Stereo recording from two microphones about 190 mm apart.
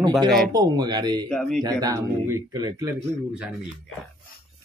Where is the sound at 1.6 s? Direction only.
20° right (ahead or behind).